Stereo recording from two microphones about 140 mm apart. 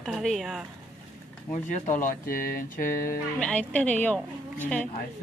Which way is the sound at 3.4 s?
10° left (ahead or behind).